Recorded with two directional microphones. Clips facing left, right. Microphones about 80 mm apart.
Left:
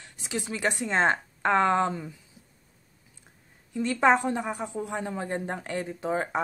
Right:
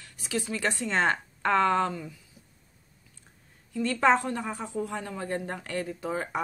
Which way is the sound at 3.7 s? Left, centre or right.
Left.